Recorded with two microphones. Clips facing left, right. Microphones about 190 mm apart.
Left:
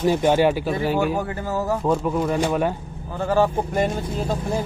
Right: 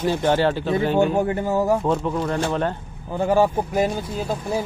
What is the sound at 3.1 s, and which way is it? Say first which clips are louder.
Speech: right 2 dB; 15° right (ahead or behind).